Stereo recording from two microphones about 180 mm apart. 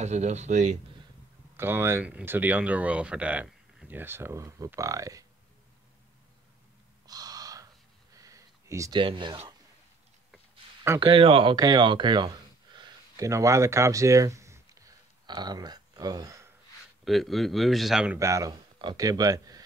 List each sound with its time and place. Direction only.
0.0 s speech: 40° right (ahead or behind)
1.6 s speech: 15° right (ahead or behind)
7.1 s gasp: 20° right (ahead or behind)
8.1 s a sound: 20° right (ahead or behind)
9.0 s speech: 25° right (ahead or behind)
11.0 s speech: 30° right (ahead or behind)
17.0 s speech: centre (ahead or behind); by 19.6 s 20° right (ahead or behind)